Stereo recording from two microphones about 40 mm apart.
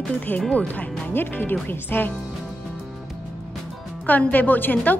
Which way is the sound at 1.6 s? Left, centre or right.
Left.